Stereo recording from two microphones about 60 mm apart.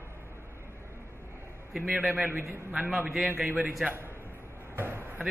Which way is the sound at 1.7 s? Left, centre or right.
Centre.